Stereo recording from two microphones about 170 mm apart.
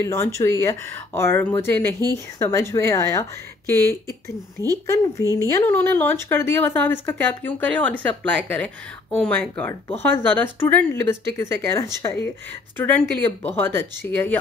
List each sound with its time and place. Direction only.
0.0 s speech: 15° left (ahead or behind)